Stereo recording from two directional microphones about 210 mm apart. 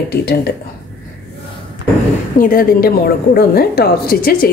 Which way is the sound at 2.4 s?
45° left (ahead or behind).